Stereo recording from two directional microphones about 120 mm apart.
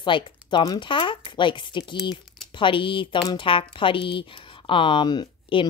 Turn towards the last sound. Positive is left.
turn(degrees=40)  # may be behind; listen again after turning